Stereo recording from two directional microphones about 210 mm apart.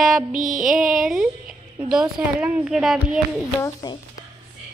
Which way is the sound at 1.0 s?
5° right (ahead or behind).